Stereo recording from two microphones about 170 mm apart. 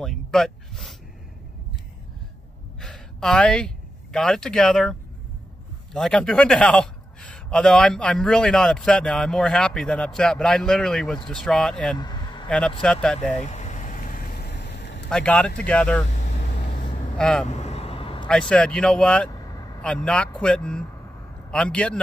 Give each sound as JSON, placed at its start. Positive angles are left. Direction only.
{"t": 0.0, "sound": "a man's voice", "side_deg": 0}
{"t": 2.8, "sound": "speech", "side_deg": 5}
{"t": 5.9, "sound": "a man's voice", "side_deg": 5}
{"t": 12.0, "sound": "a sound", "side_deg": 25}
{"t": 12.4, "sound": "a man's voice", "side_deg": 5}
{"t": 13.3, "sound": "vehicle", "side_deg": 40}
{"t": 15.0, "sound": "speech", "side_deg": 5}
{"t": 16.1, "sound": "vehicle", "side_deg": 45}
{"t": 17.2, "sound": "a man's voice", "side_deg": 5}
{"t": 17.5, "sound": "a sound", "side_deg": 40}
{"t": 18.5, "sound": "a man's voice", "side_deg": 5}